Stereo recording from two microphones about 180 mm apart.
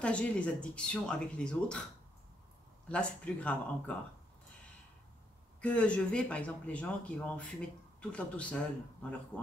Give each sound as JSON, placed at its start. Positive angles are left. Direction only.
{"t": 0.0, "sound": "speech", "side_deg": 5}
{"t": 2.9, "sound": "speech", "side_deg": 5}
{"t": 5.6, "sound": "speech", "side_deg": 5}